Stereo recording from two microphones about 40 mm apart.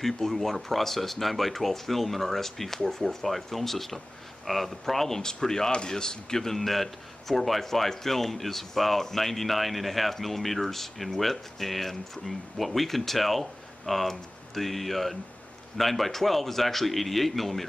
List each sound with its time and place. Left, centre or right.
0.0 s a man's voice: centre